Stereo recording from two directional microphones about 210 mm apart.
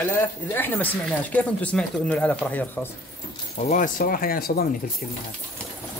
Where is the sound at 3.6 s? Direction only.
35° left (ahead or behind).